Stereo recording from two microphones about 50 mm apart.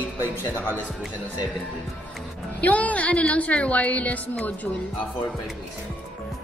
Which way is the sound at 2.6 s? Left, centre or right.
Left.